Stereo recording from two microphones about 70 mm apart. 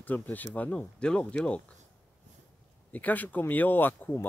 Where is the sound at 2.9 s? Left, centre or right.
Left.